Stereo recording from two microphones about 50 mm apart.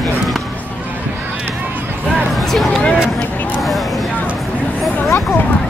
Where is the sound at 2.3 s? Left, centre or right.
Centre.